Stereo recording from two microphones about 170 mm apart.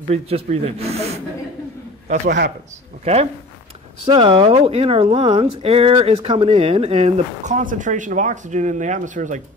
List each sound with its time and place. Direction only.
0.1 s speech: 40° right (ahead or behind)
2.2 s a man's voice: 75° right (ahead or behind)
4.1 s speech: 30° right (ahead or behind); by 9.4 s 45° right (ahead or behind)